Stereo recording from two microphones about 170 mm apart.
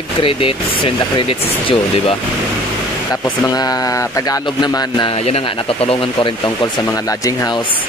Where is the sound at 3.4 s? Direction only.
20° left (ahead or behind).